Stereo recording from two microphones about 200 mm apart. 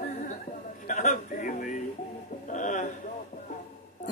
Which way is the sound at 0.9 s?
40° left (ahead or behind).